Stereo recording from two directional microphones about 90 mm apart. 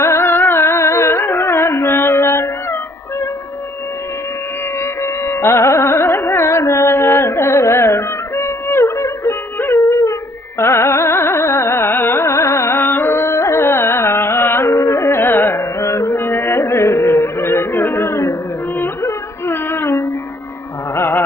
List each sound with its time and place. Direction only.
0.0 s carnatic music: 30° left (ahead or behind)
5.0 s carnatic music: 30° left (ahead or behind)
19.0 s music: 25° left (ahead or behind)
20.9 s carnatic music: 25° left (ahead or behind)